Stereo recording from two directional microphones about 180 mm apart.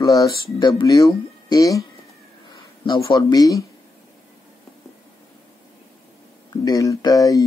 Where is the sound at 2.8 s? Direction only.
25° left (ahead or behind).